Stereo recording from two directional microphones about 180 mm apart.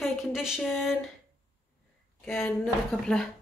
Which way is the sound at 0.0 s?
Centre (ahead or behind).